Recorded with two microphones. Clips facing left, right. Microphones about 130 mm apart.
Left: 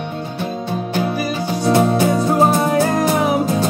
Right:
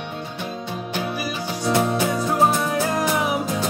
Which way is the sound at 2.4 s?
45° left (ahead or behind).